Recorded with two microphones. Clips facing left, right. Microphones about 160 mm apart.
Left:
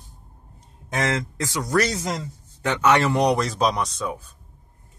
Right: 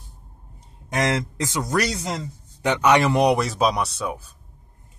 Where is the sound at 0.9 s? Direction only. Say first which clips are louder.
Right 2 dB; 20° right (ahead or behind).